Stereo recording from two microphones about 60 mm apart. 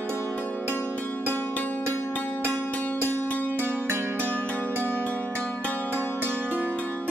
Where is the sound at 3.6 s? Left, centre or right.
Right.